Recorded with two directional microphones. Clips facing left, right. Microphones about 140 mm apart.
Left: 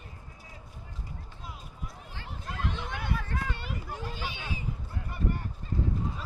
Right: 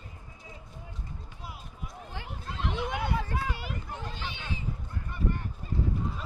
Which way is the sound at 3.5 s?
Centre (ahead or behind).